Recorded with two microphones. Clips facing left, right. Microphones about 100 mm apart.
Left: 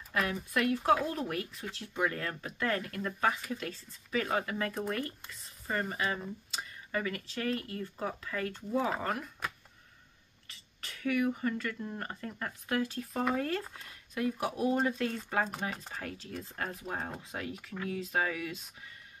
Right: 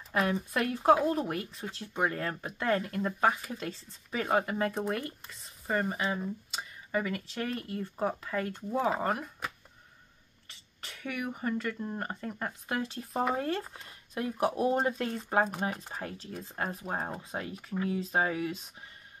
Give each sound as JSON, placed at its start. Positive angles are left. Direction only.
{"t": 0.1, "sound": "speech", "side_deg": -30}
{"t": 10.8, "sound": "speech", "side_deg": -30}